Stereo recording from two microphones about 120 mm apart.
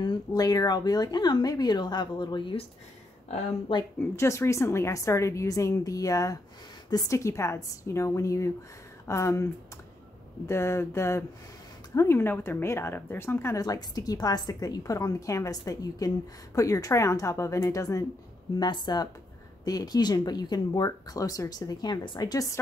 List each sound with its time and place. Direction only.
0.0 s speech: 35° left (ahead or behind)
4.2 s speech: 25° left (ahead or behind)